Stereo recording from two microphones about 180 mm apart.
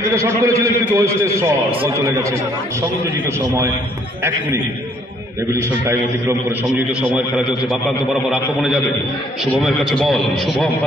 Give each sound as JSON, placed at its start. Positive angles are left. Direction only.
{"t": 0.1, "sound": "a man's voice", "side_deg": -15}
{"t": 5.6, "sound": "a man's voice", "side_deg": -15}